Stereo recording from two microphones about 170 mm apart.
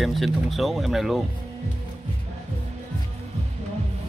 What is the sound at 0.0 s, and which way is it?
Speech, centre (ahead or behind).